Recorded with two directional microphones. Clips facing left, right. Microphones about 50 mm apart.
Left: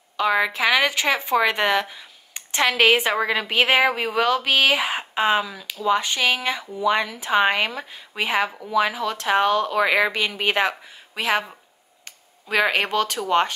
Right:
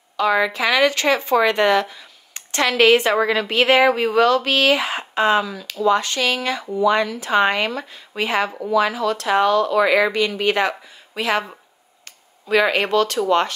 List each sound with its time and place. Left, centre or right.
0.2 s speech: centre
9.8 s speech: centre
12.4 s speech: centre